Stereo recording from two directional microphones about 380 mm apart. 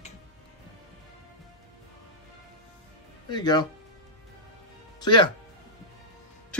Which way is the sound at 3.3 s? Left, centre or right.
Centre.